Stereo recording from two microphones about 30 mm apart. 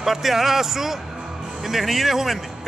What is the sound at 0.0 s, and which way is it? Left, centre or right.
A man's voice, centre.